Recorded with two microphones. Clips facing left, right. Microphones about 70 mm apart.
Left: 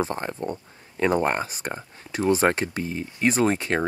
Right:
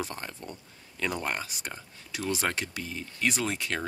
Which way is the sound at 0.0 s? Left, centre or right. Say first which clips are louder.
Left 10 dB; left.